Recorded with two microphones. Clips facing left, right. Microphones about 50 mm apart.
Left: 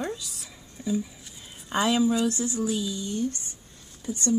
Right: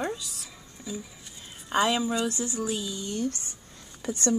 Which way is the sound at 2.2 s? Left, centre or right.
Centre.